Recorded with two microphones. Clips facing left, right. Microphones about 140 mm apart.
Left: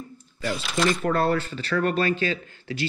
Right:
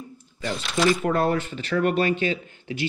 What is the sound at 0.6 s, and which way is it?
Speech, centre (ahead or behind).